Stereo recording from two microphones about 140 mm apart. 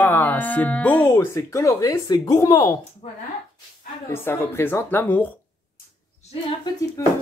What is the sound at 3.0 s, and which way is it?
Speech, 60° left (ahead or behind).